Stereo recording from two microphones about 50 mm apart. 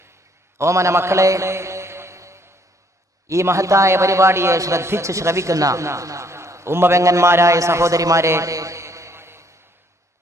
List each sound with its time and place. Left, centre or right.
0.6 s a sound: right
3.3 s a man's voice: right
7.0 s a man's voice: right